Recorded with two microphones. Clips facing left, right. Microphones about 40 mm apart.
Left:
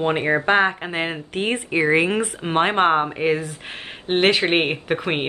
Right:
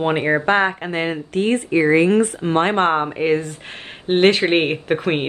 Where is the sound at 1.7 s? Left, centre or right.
Left.